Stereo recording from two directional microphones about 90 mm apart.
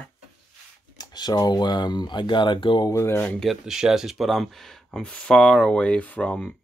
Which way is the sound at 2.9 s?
35° left (ahead or behind).